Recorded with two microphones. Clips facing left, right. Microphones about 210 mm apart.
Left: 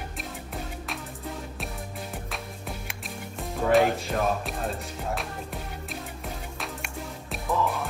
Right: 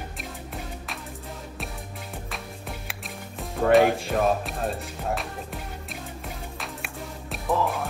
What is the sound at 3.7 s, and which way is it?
Speech, centre (ahead or behind).